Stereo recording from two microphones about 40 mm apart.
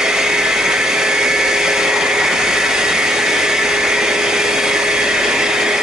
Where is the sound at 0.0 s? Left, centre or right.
Centre.